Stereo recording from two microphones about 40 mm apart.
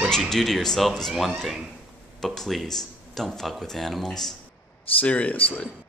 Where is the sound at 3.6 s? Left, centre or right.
Centre.